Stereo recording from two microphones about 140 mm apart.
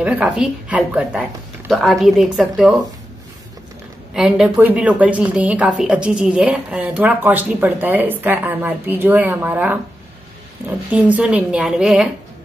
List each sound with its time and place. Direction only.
0.0 s a woman's voice: 5° right (ahead or behind)
4.1 s a woman's voice: 5° right (ahead or behind)
10.9 s a woman's voice: 10° right (ahead or behind)